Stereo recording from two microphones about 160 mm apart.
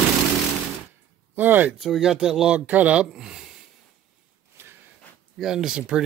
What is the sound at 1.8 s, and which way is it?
Speech, centre (ahead or behind).